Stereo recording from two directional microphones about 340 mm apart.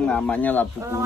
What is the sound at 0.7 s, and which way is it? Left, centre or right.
Speech, centre.